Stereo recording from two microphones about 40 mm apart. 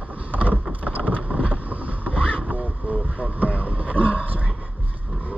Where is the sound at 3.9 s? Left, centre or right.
Left.